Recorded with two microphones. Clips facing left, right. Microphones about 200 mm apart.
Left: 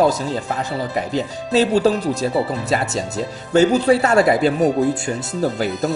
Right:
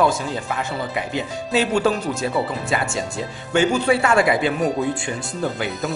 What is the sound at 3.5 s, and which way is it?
Speech, 35° left (ahead or behind).